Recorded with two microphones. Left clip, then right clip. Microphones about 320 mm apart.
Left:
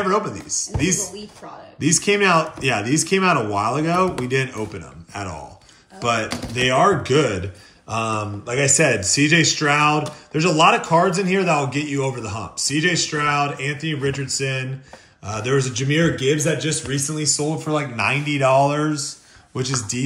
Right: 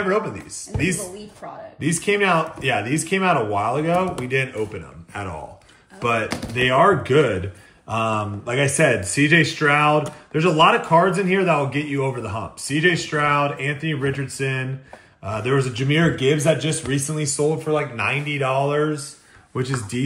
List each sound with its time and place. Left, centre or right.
0.1 s a man's voice: centre
17.7 s speech: centre
19.5 s a man's voice: centre